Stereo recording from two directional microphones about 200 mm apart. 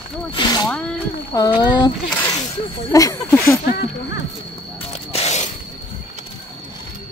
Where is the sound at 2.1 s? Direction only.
10° left (ahead or behind).